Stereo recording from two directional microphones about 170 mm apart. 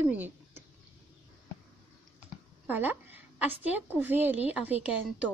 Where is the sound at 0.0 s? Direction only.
10° right (ahead or behind).